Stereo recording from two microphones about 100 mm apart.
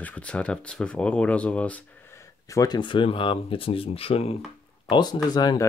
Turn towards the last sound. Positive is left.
turn(degrees=45)  # may be behind; listen again after turning